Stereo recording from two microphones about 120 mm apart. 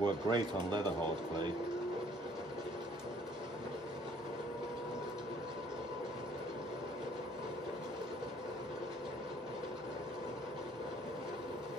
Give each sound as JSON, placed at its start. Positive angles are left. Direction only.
{"t": 0.0, "sound": "speech", "side_deg": -40}